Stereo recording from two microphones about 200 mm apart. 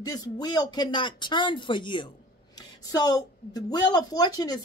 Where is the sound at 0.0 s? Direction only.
20° left (ahead or behind).